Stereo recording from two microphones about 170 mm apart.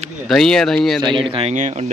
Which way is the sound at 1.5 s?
40° right (ahead or behind).